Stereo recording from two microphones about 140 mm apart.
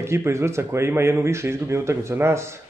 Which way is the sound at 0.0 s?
20° right (ahead or behind).